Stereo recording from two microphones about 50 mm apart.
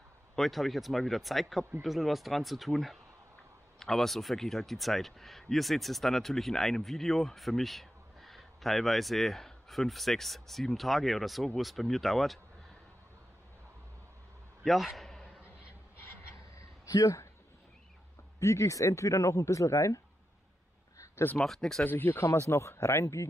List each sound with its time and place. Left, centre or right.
0.4 s speech: centre
14.6 s a man's voice: centre
18.4 s speech: left
21.4 s speech: centre
21.8 s speech: left
22.5 s speech: left